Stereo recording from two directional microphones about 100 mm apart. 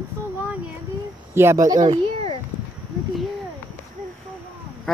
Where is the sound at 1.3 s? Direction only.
25° right (ahead or behind).